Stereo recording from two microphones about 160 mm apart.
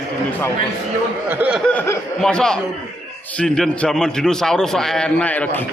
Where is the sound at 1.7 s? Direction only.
10° left (ahead or behind).